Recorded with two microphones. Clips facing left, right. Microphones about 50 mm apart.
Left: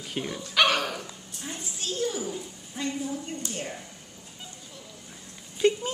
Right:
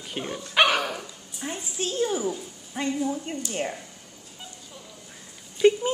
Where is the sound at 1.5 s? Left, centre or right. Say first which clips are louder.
Right 4 dB; right.